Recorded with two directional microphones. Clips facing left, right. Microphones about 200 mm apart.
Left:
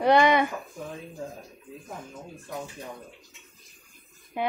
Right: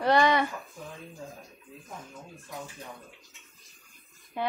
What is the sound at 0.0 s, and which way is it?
Speech, 15° left (ahead or behind).